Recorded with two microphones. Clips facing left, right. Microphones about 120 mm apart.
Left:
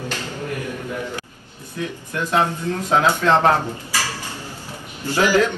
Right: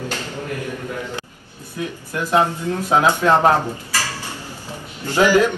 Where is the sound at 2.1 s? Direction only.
15° right (ahead or behind).